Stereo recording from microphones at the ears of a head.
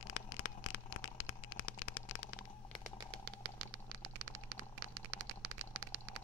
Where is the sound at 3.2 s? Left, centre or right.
Right.